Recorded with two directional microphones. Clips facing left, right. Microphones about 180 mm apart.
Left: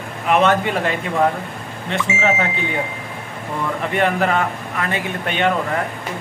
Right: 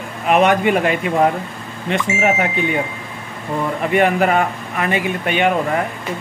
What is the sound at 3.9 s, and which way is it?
Speech, 15° right (ahead or behind).